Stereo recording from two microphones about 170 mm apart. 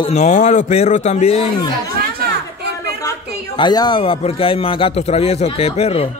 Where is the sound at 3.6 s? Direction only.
25° left (ahead or behind).